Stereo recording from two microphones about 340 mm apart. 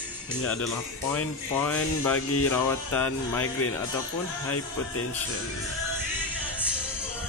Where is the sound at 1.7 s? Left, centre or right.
Centre.